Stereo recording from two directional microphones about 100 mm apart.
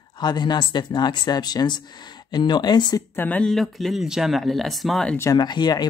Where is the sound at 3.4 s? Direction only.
Centre (ahead or behind).